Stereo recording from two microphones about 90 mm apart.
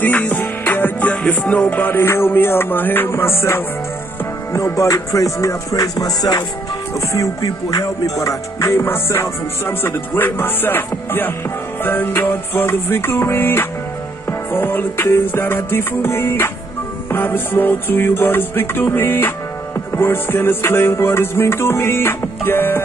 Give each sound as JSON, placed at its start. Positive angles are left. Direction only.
{"t": 0.0, "sound": "music", "side_deg": 15}